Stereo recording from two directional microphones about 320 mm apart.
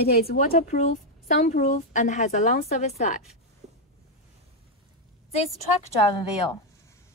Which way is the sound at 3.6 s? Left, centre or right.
Centre.